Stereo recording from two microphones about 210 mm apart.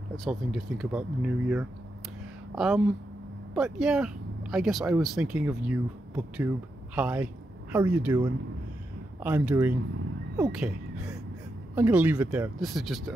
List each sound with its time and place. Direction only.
0.1 s speech: centre (ahead or behind)
9.2 s speech: 10° right (ahead or behind)
10.5 s a sound: 5° right (ahead or behind)
11.7 s speech: 10° right (ahead or behind)